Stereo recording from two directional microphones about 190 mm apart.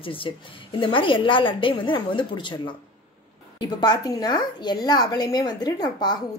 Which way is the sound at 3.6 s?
20° left (ahead or behind).